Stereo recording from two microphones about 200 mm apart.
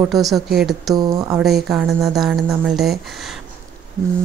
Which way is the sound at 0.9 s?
20° right (ahead or behind).